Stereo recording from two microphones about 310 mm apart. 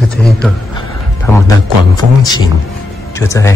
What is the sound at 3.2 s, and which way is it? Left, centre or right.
Speech, centre.